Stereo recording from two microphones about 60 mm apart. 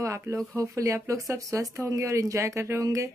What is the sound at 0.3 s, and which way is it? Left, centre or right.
Speech, right.